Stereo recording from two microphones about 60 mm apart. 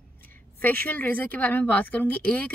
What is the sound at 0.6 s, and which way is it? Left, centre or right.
Speech, left.